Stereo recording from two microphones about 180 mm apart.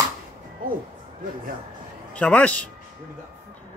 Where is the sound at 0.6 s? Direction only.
50° right (ahead or behind).